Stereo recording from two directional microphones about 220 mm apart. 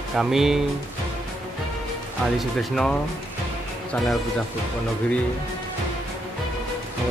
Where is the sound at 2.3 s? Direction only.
5° left (ahead or behind).